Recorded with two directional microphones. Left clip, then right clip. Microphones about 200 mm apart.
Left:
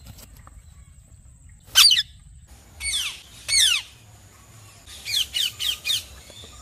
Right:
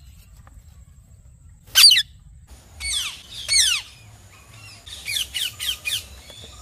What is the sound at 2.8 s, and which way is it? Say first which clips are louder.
Squawk: even; centre (ahead or behind).